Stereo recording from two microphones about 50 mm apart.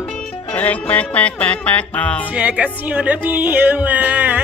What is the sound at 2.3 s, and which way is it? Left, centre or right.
Music, right.